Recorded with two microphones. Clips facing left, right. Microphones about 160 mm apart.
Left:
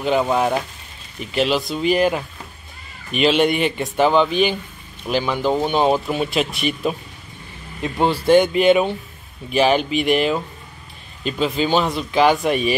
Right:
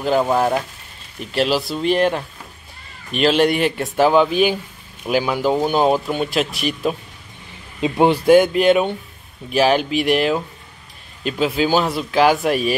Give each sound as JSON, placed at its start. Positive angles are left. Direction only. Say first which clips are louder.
{"t": 0.0, "sound": "speech", "louder": "right 1 dB", "side_deg": 0}
{"t": 7.8, "sound": "speech", "louder": "right 4 dB", "side_deg": -15}
{"t": 8.4, "sound": "speech", "louder": "even", "side_deg": 0}